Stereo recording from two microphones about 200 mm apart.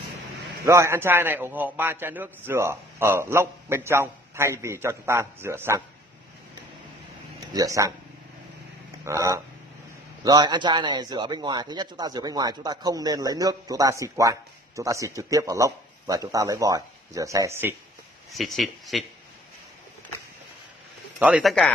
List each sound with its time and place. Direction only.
0.7 s speech: 15° right (ahead or behind)
7.3 s speech: 15° right (ahead or behind)
9.0 s speech: 15° right (ahead or behind)
18.3 s speech: centre (ahead or behind)
21.2 s speech: centre (ahead or behind)